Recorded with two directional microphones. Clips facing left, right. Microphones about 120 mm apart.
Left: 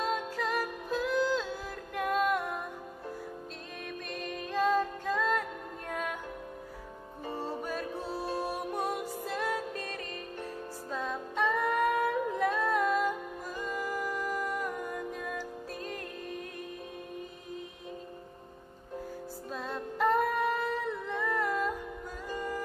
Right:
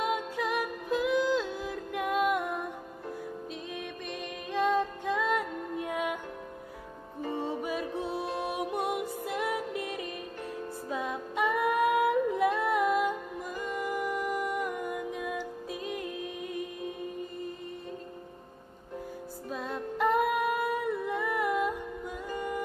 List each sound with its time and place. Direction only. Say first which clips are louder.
0.0 s music: right 2 dB; 5° right (ahead or behind)
3.7 s music: left 1 dB; centre (ahead or behind)
7.4 s music: right 3 dB; 5° right (ahead or behind)
11.9 s music: right 4 dB; 20° right (ahead or behind)
12.7 s music: right 2 dB; 5° right (ahead or behind)
19.5 s female singing: right 3 dB; 5° right (ahead or behind)
21.1 s music: even; centre (ahead or behind)